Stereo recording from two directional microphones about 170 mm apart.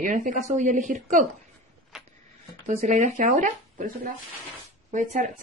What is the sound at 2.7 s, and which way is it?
A woman's voice, 45° right (ahead or behind).